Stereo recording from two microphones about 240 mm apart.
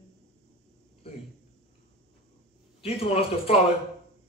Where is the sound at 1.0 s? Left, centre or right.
Left.